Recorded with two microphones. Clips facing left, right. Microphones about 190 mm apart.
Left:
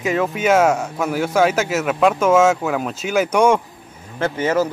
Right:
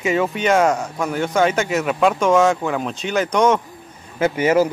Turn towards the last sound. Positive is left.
turn(degrees=-10)  # may be behind; listen again after turning